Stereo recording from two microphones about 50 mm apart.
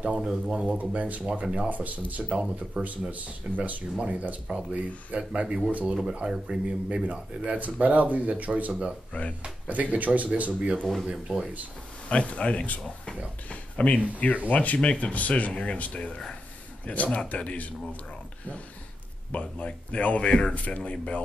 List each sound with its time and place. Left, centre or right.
0.0 s speech: centre
0.7 s speech: right
1.7 s speech: right
2.2 s speech: centre
3.1 s speech: right
5.7 s speech: right
6.2 s speech: centre; by 10.8 s right
11.1 s speech: centre
12.1 s a man's voice: left
19.3 s a man's voice: left